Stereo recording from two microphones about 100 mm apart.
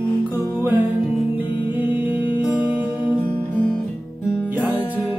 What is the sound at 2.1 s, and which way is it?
Music, 50° left (ahead or behind).